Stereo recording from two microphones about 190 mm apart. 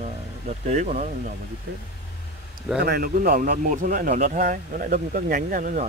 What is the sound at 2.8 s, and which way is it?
Speech, 55° right (ahead or behind).